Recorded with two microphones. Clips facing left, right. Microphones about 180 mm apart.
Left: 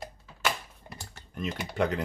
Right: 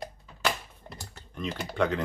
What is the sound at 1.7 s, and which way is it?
Speech, 10° left (ahead or behind).